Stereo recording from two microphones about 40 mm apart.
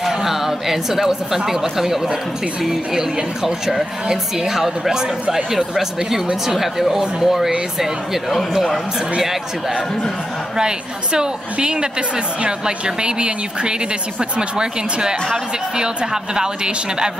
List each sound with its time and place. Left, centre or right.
0.0 s a woman's voice: centre
9.2 s a woman's voice: centre
10.5 s a woman's voice: centre